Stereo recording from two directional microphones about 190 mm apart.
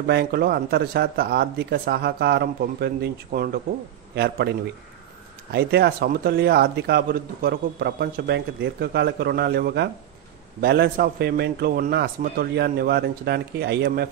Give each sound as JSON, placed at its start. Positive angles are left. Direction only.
{"t": 0.0, "sound": "a man's voice", "side_deg": -55}
{"t": 5.5, "sound": "a man's voice", "side_deg": -55}